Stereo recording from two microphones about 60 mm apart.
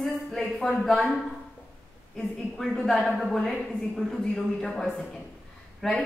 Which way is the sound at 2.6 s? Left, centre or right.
Centre.